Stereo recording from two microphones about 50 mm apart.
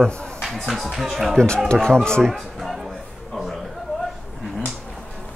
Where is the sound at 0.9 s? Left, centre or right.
Centre.